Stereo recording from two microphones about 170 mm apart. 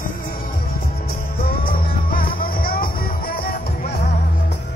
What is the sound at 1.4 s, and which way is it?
Music, 60° left (ahead or behind).